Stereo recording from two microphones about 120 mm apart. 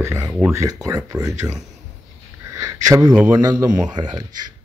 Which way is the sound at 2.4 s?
25° right (ahead or behind).